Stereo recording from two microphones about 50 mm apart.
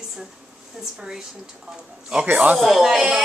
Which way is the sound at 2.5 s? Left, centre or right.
Centre.